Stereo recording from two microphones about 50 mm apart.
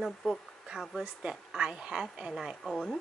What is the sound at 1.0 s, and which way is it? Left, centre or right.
Speech, centre.